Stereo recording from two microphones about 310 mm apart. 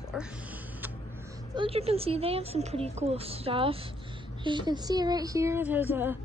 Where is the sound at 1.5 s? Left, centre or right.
Centre.